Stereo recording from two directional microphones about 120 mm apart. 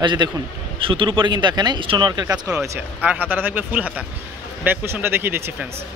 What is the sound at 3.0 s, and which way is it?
Speech, 10° right (ahead or behind).